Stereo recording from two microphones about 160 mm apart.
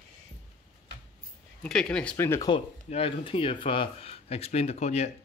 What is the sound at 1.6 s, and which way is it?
Speech, 5° left (ahead or behind).